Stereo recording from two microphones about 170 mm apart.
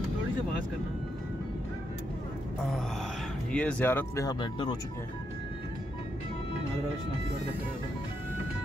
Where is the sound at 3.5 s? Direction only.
10° left (ahead or behind); by 4.8 s 25° left (ahead or behind).